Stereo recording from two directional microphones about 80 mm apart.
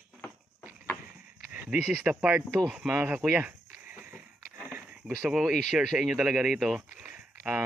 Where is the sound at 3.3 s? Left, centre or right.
Centre.